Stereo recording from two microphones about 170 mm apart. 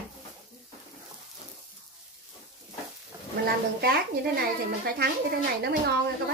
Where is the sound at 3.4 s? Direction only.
65° right (ahead or behind).